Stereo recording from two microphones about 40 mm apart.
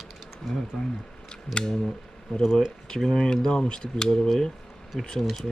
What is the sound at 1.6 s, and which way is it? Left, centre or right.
Speech, centre.